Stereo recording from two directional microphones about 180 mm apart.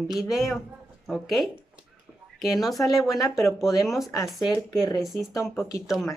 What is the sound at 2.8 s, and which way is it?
Speech, 20° left (ahead or behind).